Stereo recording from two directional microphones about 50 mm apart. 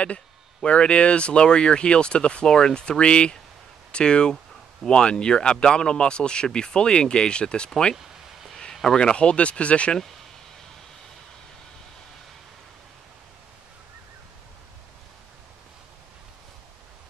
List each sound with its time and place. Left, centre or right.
0.7 s speech: left
8.9 s speech: centre